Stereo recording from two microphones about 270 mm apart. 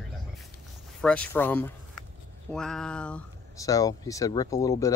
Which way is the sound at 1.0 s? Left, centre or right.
Centre.